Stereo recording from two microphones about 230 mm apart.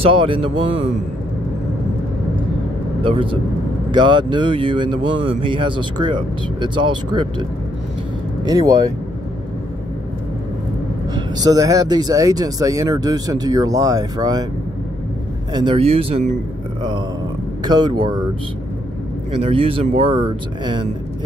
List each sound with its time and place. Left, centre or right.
0.0 s speech: right
3.0 s speech: right
8.5 s speech: centre
11.1 s speech: centre
15.5 s speech: right
17.6 s speech: centre
19.4 s speech: right